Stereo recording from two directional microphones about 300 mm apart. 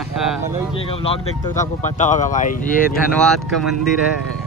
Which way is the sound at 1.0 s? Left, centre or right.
Centre.